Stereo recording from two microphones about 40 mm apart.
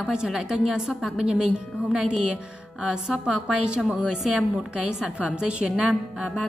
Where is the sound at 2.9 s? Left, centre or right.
Right.